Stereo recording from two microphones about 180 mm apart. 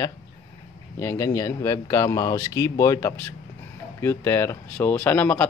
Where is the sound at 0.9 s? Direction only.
15° left (ahead or behind).